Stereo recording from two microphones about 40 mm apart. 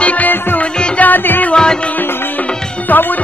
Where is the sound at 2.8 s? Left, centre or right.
Left.